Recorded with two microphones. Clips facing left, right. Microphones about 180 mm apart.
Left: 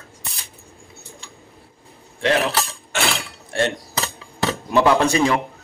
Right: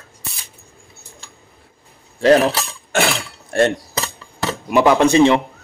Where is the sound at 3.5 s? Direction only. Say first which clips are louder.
Right 6 dB; 45° right (ahead or behind).